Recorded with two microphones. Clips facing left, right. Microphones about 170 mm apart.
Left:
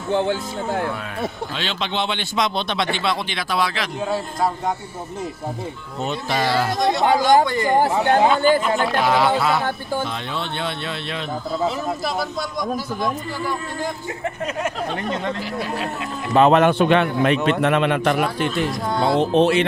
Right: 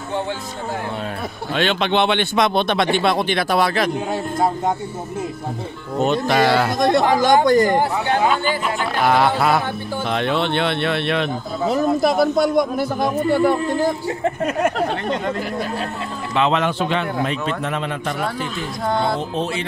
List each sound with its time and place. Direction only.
1.5 s speech: 60° right (ahead or behind)
4.1 s a man's voice: 25° right (ahead or behind)
5.9 s speech: 60° right (ahead or behind)
7.4 s speech: 40° right (ahead or behind)
8.4 s speech: 45° left (ahead or behind)
9.0 s speech: 55° right (ahead or behind)
10.0 s speech: 70° right (ahead or behind)
11.7 s speech: 55° right (ahead or behind)
16.3 s a man's voice: 50° left (ahead or behind); by 19.6 s 70° left (ahead or behind)